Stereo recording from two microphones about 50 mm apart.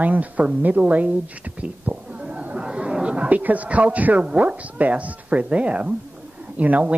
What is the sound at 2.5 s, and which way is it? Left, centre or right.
Chatter, centre.